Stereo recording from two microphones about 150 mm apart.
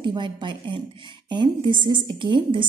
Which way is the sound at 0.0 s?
30° right (ahead or behind).